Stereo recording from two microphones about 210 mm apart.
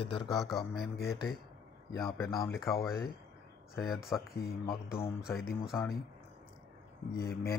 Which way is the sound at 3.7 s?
Centre (ahead or behind).